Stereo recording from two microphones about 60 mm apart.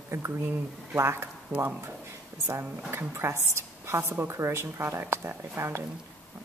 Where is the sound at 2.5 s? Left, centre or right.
Right.